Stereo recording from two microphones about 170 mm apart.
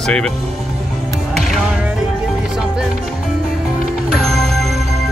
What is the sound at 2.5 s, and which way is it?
Speech, 5° right (ahead or behind).